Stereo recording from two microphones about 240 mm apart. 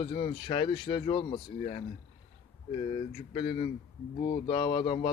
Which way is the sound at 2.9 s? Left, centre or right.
Left.